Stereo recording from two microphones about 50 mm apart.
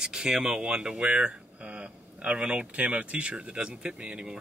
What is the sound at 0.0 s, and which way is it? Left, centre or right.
Speech, centre.